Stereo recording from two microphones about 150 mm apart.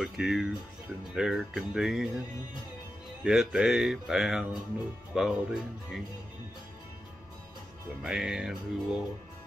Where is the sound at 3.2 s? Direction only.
5° right (ahead or behind).